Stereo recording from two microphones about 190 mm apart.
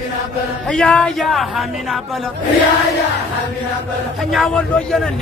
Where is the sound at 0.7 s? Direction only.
5° left (ahead or behind).